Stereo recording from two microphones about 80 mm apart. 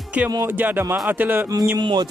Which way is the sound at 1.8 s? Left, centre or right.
Right.